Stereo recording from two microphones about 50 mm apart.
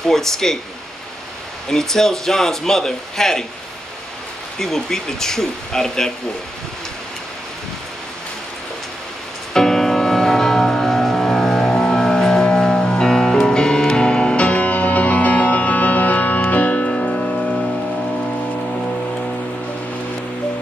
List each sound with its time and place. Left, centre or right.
0.0 s a man's voice: centre
1.7 s a man's voice: centre
4.6 s a man's voice: centre
9.5 s music: centre